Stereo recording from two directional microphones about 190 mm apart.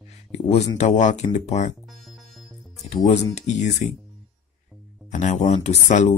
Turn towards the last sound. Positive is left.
turn(degrees=35)  # may be behind; listen again after turning